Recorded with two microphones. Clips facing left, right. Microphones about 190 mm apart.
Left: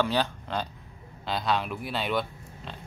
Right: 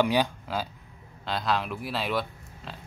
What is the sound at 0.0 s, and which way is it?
Speech, 10° right (ahead or behind).